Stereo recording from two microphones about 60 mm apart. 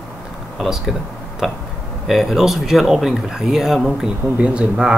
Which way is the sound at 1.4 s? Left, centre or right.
Centre.